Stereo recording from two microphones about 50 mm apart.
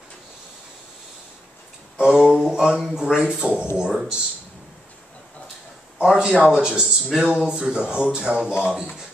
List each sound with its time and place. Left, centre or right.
2.0 s speech: centre
5.9 s a man's voice: centre